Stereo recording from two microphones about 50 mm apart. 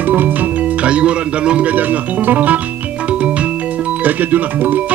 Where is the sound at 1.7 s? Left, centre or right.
Right.